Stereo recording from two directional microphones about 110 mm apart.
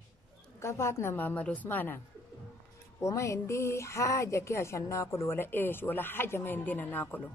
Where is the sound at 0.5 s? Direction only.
25° left (ahead or behind).